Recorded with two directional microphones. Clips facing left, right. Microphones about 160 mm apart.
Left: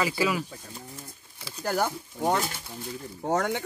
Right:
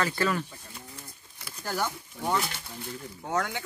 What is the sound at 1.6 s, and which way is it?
Speech, 55° left (ahead or behind).